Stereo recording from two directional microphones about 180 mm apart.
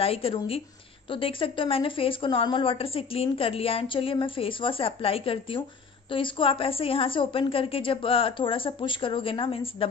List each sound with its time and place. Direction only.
0.0 s a woman's voice: 30° left (ahead or behind)